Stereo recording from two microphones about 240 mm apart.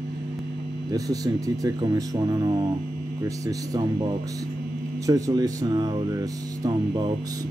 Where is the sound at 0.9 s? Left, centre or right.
Centre.